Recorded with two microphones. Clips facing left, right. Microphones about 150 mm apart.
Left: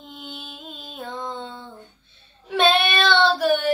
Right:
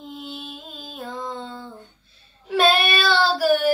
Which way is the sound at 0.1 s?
Centre (ahead or behind).